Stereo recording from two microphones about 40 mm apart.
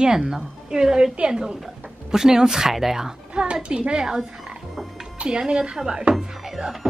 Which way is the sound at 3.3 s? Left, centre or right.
Right.